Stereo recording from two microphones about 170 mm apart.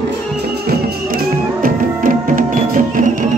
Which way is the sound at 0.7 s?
65° right (ahead or behind).